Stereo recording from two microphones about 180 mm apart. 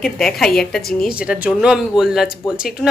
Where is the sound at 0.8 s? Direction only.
55° left (ahead or behind).